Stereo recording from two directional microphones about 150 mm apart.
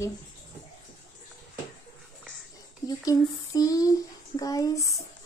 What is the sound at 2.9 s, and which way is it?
A woman's voice, 25° left (ahead or behind).